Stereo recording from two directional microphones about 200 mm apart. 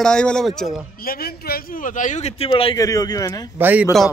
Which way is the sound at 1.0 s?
50° left (ahead or behind).